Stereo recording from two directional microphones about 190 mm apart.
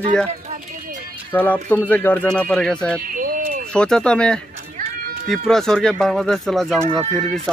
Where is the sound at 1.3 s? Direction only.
10° left (ahead or behind).